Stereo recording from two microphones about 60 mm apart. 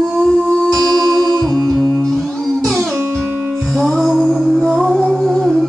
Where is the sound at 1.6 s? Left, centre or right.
Centre.